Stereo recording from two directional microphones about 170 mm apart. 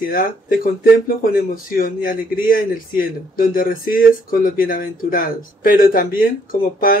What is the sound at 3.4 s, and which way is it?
Speech, 55° left (ahead or behind).